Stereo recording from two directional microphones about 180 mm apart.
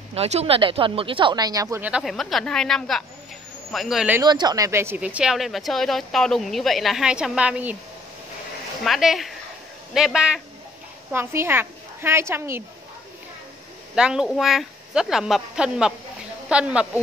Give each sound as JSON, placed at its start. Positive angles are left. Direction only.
{"t": 0.1, "sound": "speech", "side_deg": -35}
{"t": 4.2, "sound": "speech", "side_deg": -25}
{"t": 8.8, "sound": "a woman's voice", "side_deg": 0}
{"t": 13.9, "sound": "speech", "side_deg": -5}